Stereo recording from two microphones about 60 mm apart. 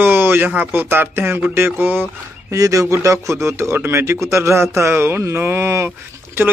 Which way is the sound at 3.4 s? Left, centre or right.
Right.